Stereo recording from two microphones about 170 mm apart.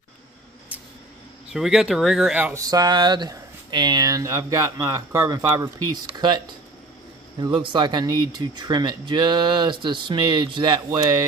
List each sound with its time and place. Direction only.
1.5 s speech: 5° right (ahead or behind)
2.7 s speech: 25° right (ahead or behind)